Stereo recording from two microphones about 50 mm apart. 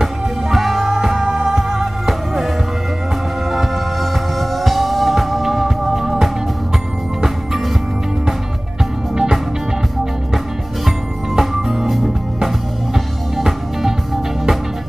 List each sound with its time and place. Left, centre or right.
0.0 s music: centre
3.5 s music: centre
9.1 s music: centre
10.9 s music: centre